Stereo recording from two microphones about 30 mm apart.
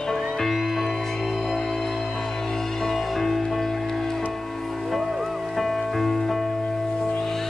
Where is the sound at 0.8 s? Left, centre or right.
Centre.